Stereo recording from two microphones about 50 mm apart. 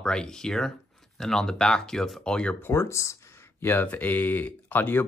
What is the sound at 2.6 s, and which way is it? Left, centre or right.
Speech, left.